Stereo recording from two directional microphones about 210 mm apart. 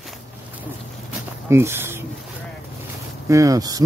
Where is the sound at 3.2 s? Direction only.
15° right (ahead or behind).